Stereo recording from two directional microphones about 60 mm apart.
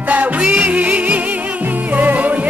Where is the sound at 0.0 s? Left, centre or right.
Right.